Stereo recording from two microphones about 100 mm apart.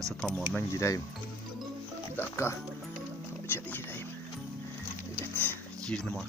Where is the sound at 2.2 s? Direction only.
25° left (ahead or behind).